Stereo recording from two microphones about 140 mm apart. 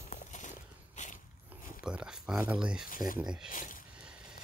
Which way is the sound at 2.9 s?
85° left.